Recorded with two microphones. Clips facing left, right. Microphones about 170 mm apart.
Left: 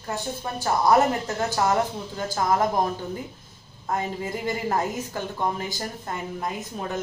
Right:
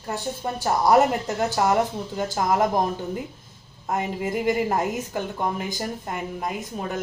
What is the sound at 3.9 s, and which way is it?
Speech, 15° right (ahead or behind).